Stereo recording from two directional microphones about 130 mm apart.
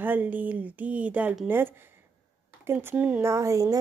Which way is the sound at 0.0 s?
15° right (ahead or behind).